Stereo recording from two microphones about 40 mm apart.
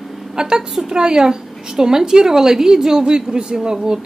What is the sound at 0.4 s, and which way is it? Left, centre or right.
A woman's voice, centre.